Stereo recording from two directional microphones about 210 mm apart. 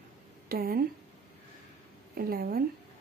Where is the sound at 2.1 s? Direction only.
45° right (ahead or behind).